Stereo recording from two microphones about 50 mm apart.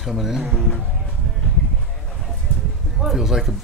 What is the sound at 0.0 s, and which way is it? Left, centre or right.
Speech, centre.